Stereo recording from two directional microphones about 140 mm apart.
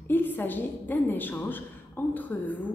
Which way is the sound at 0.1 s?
15° left (ahead or behind).